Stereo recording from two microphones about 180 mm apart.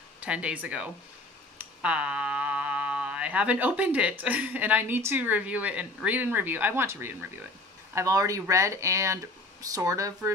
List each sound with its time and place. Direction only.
0.2 s speech: 5° right (ahead or behind)